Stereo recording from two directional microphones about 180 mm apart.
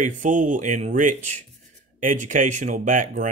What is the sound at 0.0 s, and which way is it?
Speech, 45° right (ahead or behind).